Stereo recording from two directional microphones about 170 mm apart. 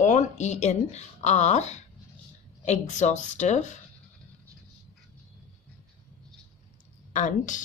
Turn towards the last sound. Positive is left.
turn(degrees=45)  # may be behind; listen again after turning